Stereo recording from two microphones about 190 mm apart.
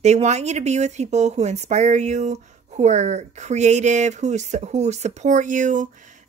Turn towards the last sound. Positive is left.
turn(degrees=-40)  # may be behind; listen again after turning